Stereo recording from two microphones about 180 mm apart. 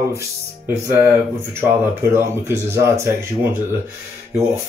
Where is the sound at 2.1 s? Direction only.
15° right (ahead or behind).